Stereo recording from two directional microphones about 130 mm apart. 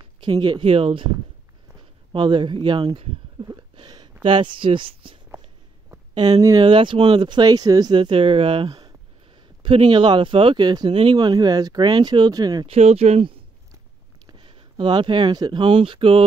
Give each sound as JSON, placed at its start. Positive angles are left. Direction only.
{"t": 0.0, "sound": "speech", "side_deg": -35}
{"t": 2.1, "sound": "speech", "side_deg": -35}
{"t": 3.4, "sound": "a sound", "side_deg": -35}
{"t": 4.2, "sound": "speech", "side_deg": -40}
{"t": 6.1, "sound": "speech", "side_deg": -30}
{"t": 12.6, "sound": "speech", "side_deg": -55}
{"t": 14.2, "sound": "speech", "side_deg": -40}